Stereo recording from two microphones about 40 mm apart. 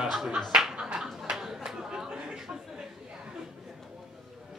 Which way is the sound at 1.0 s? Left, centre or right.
Centre.